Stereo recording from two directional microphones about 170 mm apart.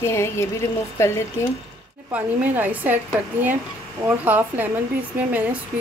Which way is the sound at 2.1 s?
10° right (ahead or behind).